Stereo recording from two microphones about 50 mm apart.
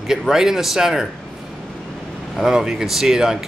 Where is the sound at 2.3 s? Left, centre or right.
Centre.